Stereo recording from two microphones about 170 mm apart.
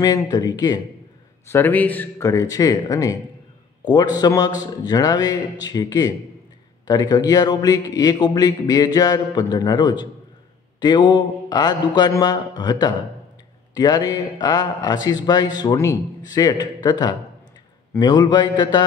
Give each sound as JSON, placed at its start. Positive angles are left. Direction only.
{"t": 0.0, "sound": "a man's voice", "side_deg": 20}
{"t": 1.5, "sound": "a man's voice", "side_deg": 10}